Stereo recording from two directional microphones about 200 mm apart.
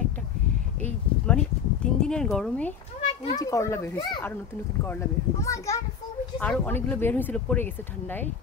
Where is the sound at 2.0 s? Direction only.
5° left (ahead or behind).